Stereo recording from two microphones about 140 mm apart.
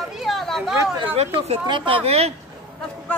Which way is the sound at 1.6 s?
35° right (ahead or behind).